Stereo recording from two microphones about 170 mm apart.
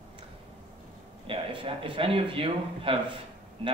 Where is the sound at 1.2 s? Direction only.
30° right (ahead or behind).